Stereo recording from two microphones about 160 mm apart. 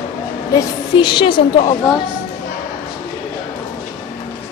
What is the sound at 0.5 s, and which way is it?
A woman's voice, 30° left (ahead or behind).